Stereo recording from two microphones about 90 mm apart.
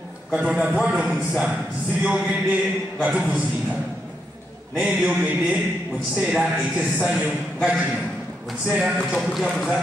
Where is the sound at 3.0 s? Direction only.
15° right (ahead or behind).